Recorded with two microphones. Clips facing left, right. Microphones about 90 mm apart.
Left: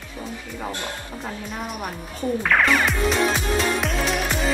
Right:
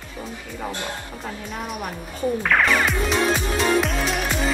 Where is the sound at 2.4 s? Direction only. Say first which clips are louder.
Left 1 dB; centre (ahead or behind).